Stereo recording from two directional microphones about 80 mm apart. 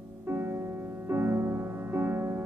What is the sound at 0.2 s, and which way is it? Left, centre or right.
Music, right.